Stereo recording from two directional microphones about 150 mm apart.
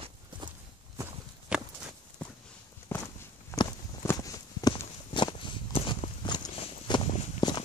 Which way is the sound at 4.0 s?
20° left (ahead or behind).